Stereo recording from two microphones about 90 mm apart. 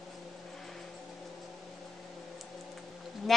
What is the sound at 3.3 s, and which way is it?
Speech, centre (ahead or behind).